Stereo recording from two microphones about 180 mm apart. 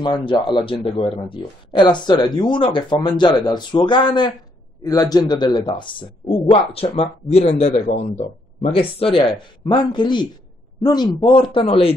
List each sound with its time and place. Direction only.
0.0 s speech: 25° left (ahead or behind)